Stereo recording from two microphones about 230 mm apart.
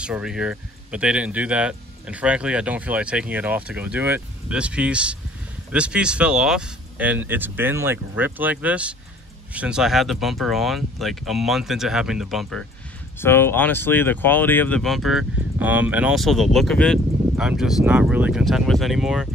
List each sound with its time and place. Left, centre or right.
0.0 s speech: centre